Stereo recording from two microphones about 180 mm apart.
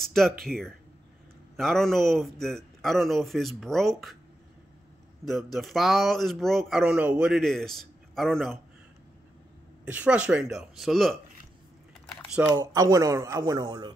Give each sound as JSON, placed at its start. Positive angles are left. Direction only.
{"t": 0.0, "sound": "speech", "side_deg": 0}
{"t": 5.5, "sound": "speech", "side_deg": 0}
{"t": 9.8, "sound": "speech", "side_deg": -10}
{"t": 12.4, "sound": "speech", "side_deg": -20}